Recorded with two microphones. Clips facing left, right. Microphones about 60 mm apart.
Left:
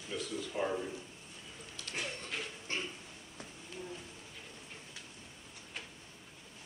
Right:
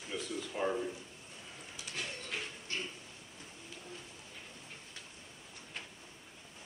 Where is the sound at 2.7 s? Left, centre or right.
Left.